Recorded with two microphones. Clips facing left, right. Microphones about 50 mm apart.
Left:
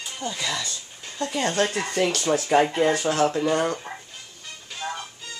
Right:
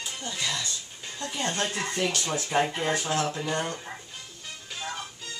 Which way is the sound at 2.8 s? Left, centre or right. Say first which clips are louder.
Left 6 dB; left.